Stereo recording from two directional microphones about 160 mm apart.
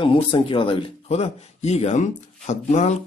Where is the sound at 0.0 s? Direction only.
35° left (ahead or behind).